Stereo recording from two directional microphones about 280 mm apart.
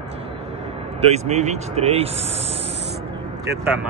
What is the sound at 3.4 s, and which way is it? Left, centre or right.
Speech, centre.